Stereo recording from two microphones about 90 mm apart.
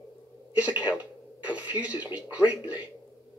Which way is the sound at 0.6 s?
15° right (ahead or behind).